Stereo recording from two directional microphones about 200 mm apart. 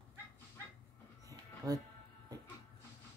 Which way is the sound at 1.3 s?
15° right (ahead or behind).